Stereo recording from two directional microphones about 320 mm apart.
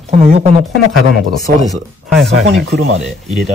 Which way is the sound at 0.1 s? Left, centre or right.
Right.